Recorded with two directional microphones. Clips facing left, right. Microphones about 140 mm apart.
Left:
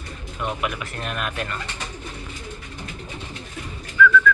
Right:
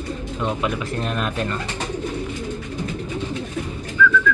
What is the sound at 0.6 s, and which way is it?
Speech, 30° right (ahead or behind).